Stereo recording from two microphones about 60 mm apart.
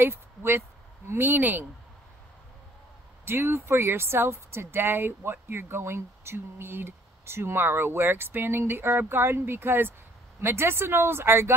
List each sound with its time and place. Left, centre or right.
0.0 s speech: right
3.3 s speech: right